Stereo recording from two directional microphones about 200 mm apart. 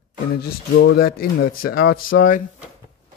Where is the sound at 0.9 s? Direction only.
50° left (ahead or behind).